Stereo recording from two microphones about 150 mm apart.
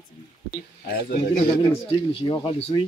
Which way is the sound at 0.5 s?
75° left (ahead or behind).